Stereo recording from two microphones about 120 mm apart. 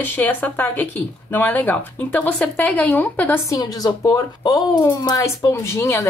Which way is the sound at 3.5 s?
30° left (ahead or behind).